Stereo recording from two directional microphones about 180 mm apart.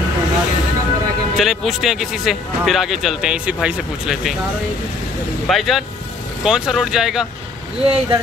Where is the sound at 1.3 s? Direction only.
Centre (ahead or behind).